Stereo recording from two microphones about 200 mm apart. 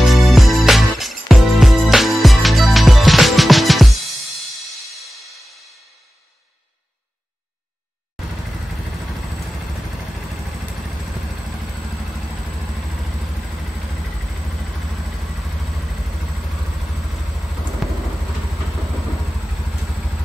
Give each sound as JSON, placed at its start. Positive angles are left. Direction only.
{"t": 0.0, "sound": "music", "side_deg": 0}
{"t": 17.8, "sound": "vehicle", "side_deg": 0}